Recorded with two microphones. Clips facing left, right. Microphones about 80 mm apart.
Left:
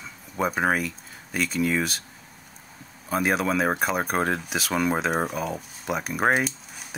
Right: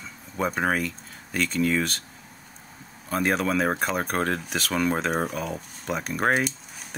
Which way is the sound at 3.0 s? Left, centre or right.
Centre.